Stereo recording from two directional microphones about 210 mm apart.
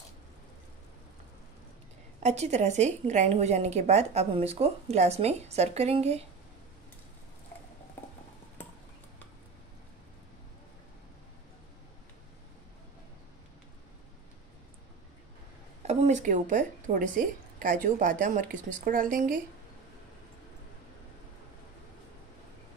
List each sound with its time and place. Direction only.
2.1 s a woman's voice: 30° right (ahead or behind)
15.9 s a woman's voice: 35° right (ahead or behind)